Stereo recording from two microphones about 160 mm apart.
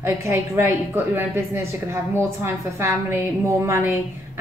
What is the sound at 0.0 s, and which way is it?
Speech, 15° right (ahead or behind).